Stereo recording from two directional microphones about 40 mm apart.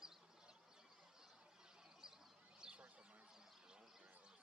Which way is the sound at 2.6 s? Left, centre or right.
Centre.